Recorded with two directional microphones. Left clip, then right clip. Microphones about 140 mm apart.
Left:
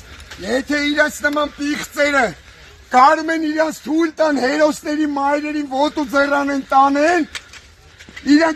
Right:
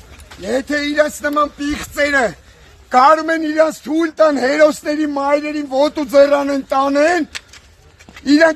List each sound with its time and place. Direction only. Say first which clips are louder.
0.4 s a man's voice: right 1 dB; 15° right (ahead or behind)
8.3 s speech: right 3 dB; 30° right (ahead or behind)